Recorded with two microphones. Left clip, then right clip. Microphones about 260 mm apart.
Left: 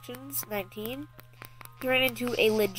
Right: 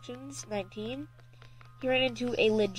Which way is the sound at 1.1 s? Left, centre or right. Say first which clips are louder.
Left 8 dB; left.